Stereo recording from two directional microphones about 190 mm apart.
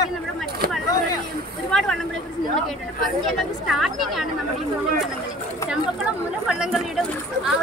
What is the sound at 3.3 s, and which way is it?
Speech, centre (ahead or behind).